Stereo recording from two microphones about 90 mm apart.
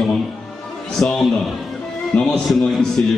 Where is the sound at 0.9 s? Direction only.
5° left (ahead or behind).